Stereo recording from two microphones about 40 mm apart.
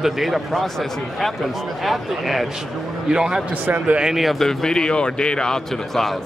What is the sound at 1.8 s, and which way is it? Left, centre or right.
Speech, centre.